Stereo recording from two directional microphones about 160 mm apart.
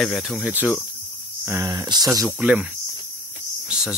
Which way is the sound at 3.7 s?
5° right (ahead or behind).